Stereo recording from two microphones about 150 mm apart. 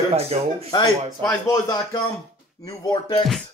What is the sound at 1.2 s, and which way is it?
A man's voice, 20° left (ahead or behind).